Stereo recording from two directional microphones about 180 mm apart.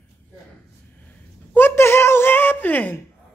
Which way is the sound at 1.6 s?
15° left (ahead or behind).